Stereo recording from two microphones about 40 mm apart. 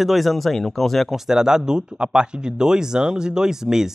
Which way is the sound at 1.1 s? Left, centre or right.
Centre.